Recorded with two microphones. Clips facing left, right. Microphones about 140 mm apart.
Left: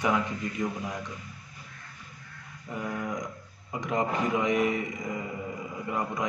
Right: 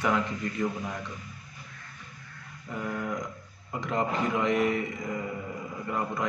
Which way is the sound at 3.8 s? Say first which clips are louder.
Even; 15° left (ahead or behind).